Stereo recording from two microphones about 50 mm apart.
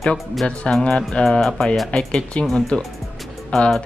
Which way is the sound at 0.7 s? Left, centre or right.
Centre.